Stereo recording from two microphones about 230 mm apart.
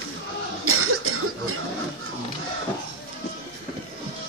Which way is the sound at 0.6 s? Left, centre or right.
Right.